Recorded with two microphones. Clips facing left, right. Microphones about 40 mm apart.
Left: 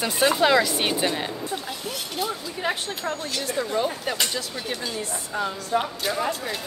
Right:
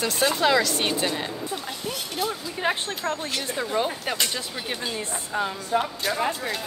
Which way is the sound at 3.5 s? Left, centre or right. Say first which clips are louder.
Left 1 dB; centre.